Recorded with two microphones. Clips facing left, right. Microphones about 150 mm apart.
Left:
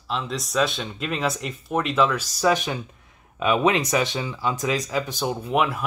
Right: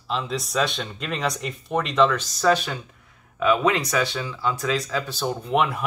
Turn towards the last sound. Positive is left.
turn(degrees=5)  # may be behind; listen again after turning